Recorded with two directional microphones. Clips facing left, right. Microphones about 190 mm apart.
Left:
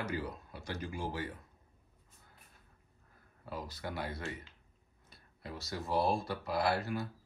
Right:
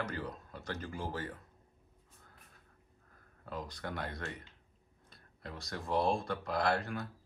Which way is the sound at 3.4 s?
5° left (ahead or behind).